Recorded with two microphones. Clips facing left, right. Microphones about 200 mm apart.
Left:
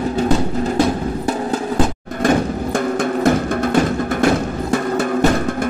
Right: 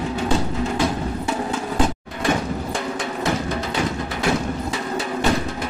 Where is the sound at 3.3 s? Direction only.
50° left (ahead or behind).